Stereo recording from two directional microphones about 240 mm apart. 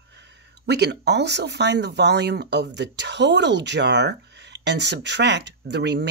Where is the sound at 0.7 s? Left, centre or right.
Right.